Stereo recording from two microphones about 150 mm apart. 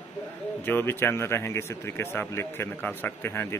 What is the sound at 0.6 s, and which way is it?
Speech, 15° left (ahead or behind).